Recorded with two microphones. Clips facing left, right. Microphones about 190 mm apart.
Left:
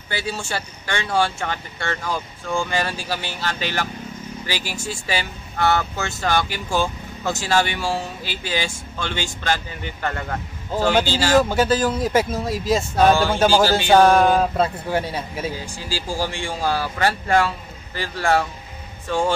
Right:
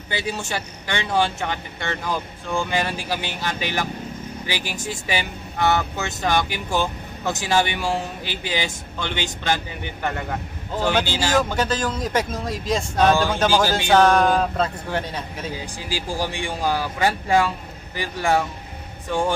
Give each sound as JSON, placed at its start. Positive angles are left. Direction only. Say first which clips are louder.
{"t": 0.1, "sound": "speech", "louder": "even", "side_deg": -20}
{"t": 11.3, "sound": "speech", "louder": "left 5 dB", "side_deg": 5}
{"t": 15.5, "sound": "speech", "louder": "even", "side_deg": -15}